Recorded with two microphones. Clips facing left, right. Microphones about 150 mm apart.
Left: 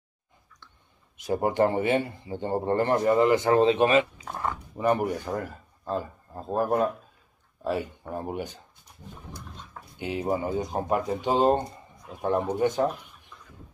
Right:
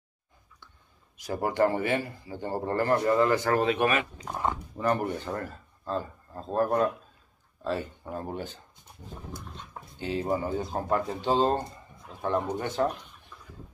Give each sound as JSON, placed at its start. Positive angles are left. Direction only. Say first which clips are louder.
{"t": 1.1, "sound": "a man's voice", "louder": "left 3 dB", "side_deg": 20}
{"t": 4.3, "sound": "speech", "louder": "right 1 dB", "side_deg": 0}
{"t": 4.7, "sound": "speech", "louder": "left 5 dB", "side_deg": 10}
{"t": 9.9, "sound": "speech", "louder": "left 1 dB", "side_deg": 15}